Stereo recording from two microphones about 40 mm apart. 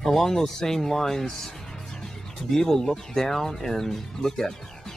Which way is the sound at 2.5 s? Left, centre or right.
Centre.